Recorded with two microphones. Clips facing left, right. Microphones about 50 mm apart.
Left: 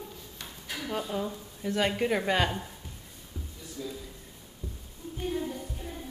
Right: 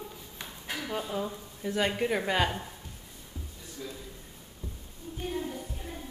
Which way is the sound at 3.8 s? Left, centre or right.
Right.